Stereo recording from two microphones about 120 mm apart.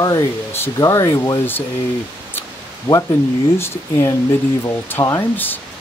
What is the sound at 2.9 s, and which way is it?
Speech, 20° left (ahead or behind).